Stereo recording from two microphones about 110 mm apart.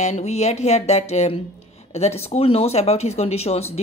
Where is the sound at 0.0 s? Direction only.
80° left.